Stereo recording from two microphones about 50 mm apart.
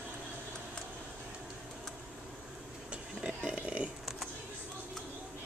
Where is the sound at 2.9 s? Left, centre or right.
Right.